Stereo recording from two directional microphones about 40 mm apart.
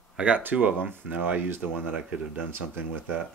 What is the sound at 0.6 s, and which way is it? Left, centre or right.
Speech, right.